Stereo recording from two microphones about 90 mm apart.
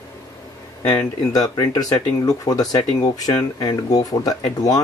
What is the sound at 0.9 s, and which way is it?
Speech, 45° left (ahead or behind).